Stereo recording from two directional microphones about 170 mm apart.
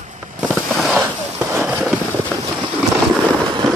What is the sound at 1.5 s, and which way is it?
Fireworks, 10° right (ahead or behind).